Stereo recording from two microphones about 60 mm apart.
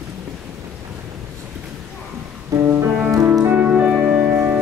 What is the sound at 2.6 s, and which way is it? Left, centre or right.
Music, right.